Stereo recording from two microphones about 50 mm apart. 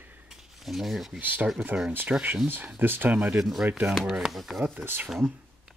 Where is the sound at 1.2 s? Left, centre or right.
Right.